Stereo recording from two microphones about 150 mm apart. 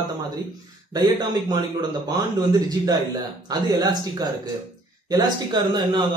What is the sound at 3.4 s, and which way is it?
A man's voice, 25° right (ahead or behind).